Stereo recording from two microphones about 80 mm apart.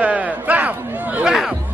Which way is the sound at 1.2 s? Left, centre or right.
Centre.